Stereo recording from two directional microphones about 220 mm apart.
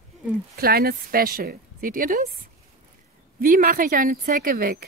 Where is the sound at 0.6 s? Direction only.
45° right (ahead or behind).